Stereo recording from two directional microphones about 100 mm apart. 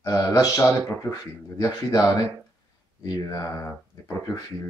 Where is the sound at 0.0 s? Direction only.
35° left (ahead or behind).